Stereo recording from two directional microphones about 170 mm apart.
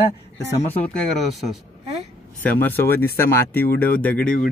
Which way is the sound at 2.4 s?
10° left (ahead or behind).